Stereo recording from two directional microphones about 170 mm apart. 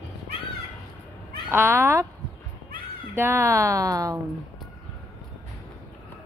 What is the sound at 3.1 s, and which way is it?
A woman's voice, 15° right (ahead or behind).